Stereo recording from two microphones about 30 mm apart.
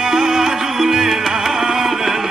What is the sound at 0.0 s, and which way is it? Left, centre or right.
Music, right.